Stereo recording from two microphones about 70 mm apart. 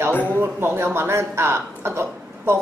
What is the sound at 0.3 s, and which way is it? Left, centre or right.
Speech, right.